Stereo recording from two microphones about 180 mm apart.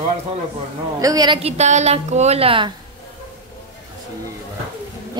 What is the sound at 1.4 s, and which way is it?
A woman's voice, 40° right (ahead or behind).